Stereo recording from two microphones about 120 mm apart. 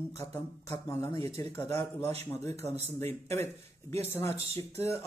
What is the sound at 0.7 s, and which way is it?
Speech, 25° left (ahead or behind).